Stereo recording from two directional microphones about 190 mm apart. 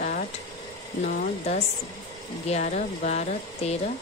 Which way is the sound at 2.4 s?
35° left (ahead or behind).